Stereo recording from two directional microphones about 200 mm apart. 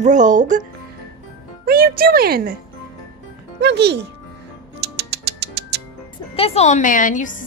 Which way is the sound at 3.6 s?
55° right (ahead or behind).